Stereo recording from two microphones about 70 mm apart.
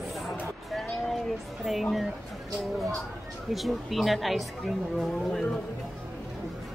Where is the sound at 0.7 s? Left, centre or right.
Centre.